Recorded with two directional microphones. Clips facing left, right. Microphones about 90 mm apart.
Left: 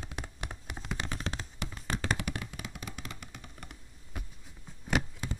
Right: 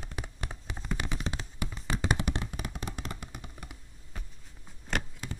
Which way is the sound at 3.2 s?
15° right (ahead or behind).